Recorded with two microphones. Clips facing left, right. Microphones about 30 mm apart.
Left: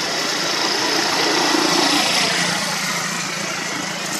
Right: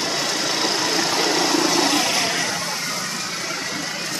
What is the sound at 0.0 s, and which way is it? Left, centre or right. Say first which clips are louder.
Vehicle: left 1 dB; centre.